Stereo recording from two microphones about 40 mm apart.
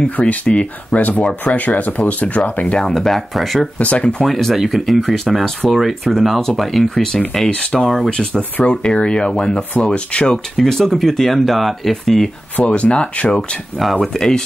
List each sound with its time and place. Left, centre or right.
0.0 s speech: left
2.8 s speech: centre
3.7 s speech: left
4.2 s speech: centre
8.1 s speech: left
8.4 s speech: left
8.8 s speech: left
10.3 s speech: centre
12.5 s speech: left
14.1 s speech: centre